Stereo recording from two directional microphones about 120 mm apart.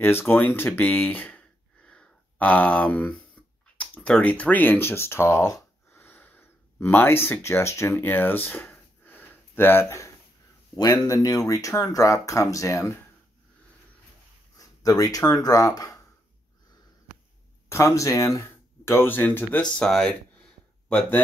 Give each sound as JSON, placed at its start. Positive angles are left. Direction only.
{"t": 0.0, "sound": "speech", "side_deg": 20}
{"t": 3.4, "sound": "finger snapping", "side_deg": 10}
{"t": 3.7, "sound": "speech", "side_deg": 10}
{"t": 14.6, "sound": "speech", "side_deg": 30}
{"t": 17.6, "sound": "speech", "side_deg": 25}
{"t": 19.8, "sound": "speech", "side_deg": 5}